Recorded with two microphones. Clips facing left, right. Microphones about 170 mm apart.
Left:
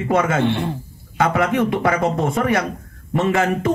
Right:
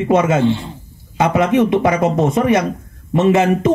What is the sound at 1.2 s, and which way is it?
Speech, 20° right (ahead or behind).